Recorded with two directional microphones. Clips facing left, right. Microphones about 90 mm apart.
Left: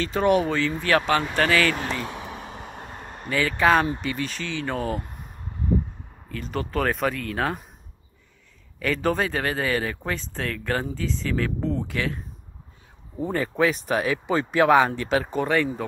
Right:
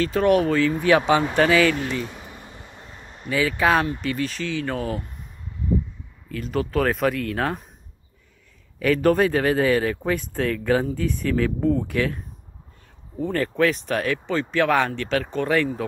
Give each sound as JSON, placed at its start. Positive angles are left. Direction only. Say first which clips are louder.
{"t": 0.0, "sound": "speech", "louder": "right 2 dB", "side_deg": 0}
{"t": 2.0, "sound": "a sound", "louder": "left 5 dB", "side_deg": 80}
{"t": 3.3, "sound": "speech", "louder": "even", "side_deg": -5}
{"t": 5.0, "sound": "a sound", "louder": "left 1 dB", "side_deg": 40}
{"t": 6.2, "sound": "speech", "louder": "right 4 dB", "side_deg": 0}
{"t": 8.7, "sound": "speech", "louder": "right 5 dB", "side_deg": 0}
{"t": 13.4, "sound": "speech", "louder": "right 2 dB", "side_deg": 5}